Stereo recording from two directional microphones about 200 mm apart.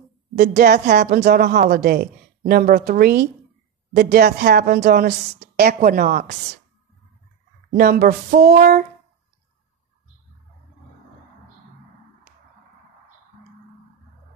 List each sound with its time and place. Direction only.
0.4 s a woman's voice: 45° right (ahead or behind)
7.7 s a woman's voice: 50° right (ahead or behind)